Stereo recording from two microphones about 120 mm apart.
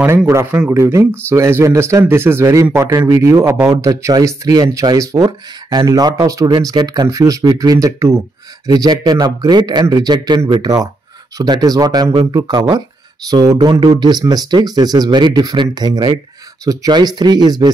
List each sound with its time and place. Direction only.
0.3 s a man's voice: 20° right (ahead or behind)